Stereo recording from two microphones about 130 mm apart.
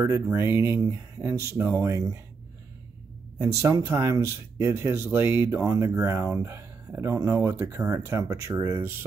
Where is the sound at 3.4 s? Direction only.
25° right (ahead or behind).